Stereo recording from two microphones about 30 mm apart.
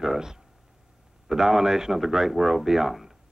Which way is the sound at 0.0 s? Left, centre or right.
Centre.